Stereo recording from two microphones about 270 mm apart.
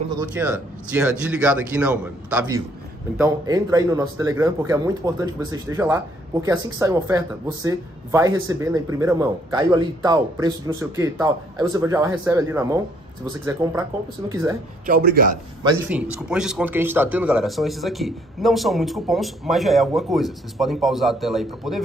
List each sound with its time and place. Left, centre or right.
0.2 s speech: centre
14.9 s speech: right
15.6 s speech: centre